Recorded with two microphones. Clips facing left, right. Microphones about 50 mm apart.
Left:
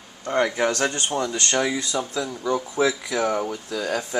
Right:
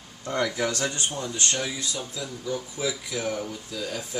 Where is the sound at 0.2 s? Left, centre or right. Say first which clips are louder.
Left 5 dB; left.